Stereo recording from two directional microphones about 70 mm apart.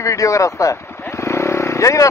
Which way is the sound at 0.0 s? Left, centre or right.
Left.